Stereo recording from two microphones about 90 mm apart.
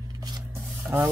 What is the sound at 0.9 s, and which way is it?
Speech, 30° right (ahead or behind).